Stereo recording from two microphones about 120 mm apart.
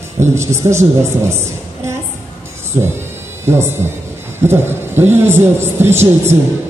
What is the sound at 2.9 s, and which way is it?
Music, 20° right (ahead or behind).